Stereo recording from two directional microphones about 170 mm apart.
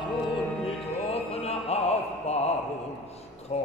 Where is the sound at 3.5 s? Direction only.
40° left (ahead or behind).